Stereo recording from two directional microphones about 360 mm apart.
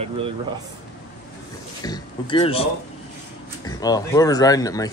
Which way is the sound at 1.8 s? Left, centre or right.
Centre.